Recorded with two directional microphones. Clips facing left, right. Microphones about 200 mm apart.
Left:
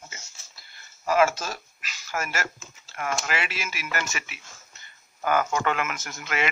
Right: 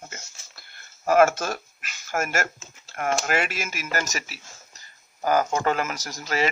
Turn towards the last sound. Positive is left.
turn(degrees=-35)  # may be behind; listen again after turning